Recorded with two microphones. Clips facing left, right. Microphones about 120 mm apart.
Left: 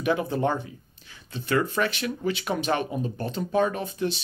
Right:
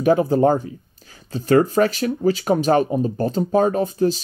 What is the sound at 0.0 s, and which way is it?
Speech, 40° right (ahead or behind).